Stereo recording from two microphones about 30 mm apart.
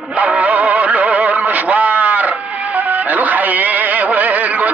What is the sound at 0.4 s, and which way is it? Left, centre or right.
Music, right.